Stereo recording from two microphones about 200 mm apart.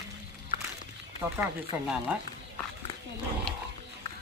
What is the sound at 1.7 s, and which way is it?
Speech, 5° right (ahead or behind).